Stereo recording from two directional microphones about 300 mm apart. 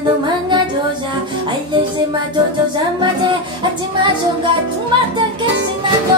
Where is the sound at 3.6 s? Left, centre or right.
Centre.